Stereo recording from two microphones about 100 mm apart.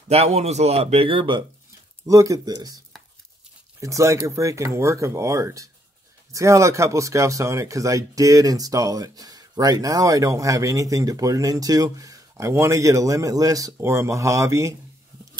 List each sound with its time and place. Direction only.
0.1 s speech: 90° right; by 1.4 s 60° right (ahead or behind)
2.0 s speech: 35° right (ahead or behind)
3.8 s speech: 30° right (ahead or behind)